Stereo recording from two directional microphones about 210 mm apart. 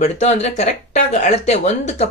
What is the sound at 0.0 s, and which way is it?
Speech, 30° left (ahead or behind).